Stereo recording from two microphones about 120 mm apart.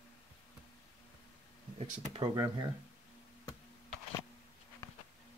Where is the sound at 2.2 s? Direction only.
35° right (ahead or behind).